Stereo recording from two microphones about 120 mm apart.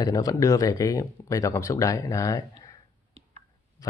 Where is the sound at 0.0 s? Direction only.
30° left (ahead or behind).